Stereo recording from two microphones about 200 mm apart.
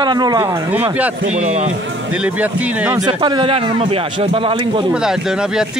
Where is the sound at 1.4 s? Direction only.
35° right (ahead or behind).